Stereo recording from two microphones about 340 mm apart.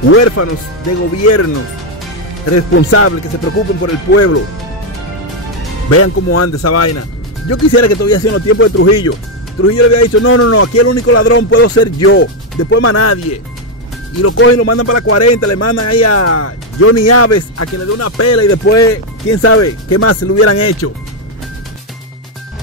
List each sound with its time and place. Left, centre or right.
0.1 s speech: left
2.7 s speech: left
5.9 s speech: left
12.8 s speech: left